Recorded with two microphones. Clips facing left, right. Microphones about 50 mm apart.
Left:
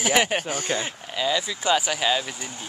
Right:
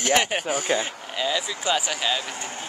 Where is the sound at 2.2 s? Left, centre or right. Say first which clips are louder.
Right 2 dB; right.